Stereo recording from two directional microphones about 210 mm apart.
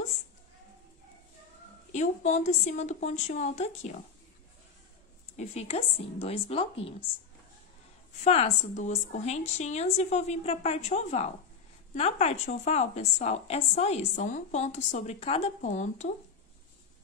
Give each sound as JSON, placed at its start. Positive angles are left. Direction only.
{"t": 1.9, "sound": "a woman's voice", "side_deg": 35}
{"t": 5.3, "sound": "a woman's voice", "side_deg": 30}
{"t": 8.2, "sound": "a woman's voice", "side_deg": 35}